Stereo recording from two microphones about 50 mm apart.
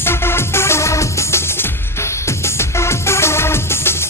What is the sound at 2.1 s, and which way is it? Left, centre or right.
Music, left.